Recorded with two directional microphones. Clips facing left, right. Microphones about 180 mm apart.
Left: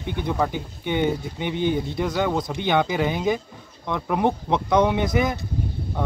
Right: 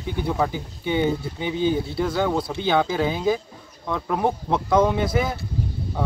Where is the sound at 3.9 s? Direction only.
10° left (ahead or behind).